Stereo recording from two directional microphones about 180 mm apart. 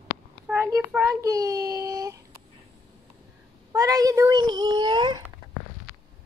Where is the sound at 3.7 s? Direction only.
20° right (ahead or behind).